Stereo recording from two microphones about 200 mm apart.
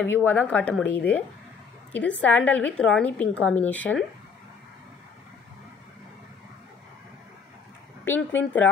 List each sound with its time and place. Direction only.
0.0 s a woman's voice: 10° left (ahead or behind)
8.0 s a woman's voice: 10° left (ahead or behind)